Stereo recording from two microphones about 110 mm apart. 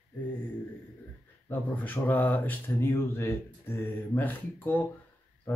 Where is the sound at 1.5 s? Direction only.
15° left (ahead or behind).